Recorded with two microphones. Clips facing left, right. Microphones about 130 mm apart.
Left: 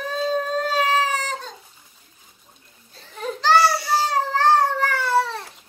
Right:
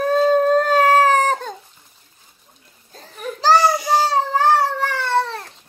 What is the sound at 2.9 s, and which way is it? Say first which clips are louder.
Baby cry: right 7 dB; 40° right (ahead or behind).